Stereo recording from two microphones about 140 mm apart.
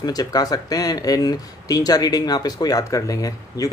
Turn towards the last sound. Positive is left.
turn(degrees=25)  # may be behind; listen again after turning